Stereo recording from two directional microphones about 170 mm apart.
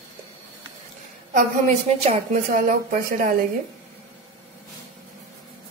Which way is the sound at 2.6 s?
50° right (ahead or behind).